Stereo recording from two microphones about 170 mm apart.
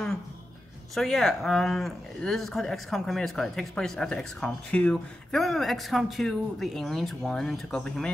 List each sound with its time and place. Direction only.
0.9 s speech: centre (ahead or behind)